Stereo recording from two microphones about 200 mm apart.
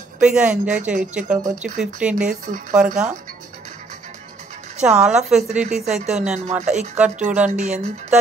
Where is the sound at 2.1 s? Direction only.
40° right (ahead or behind).